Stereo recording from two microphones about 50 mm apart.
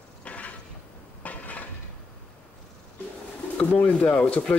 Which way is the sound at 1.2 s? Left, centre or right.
Left.